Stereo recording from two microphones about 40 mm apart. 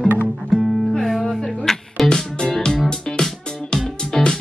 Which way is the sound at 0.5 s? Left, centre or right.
Centre.